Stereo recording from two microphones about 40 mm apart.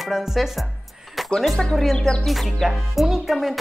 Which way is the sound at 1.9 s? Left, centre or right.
Centre.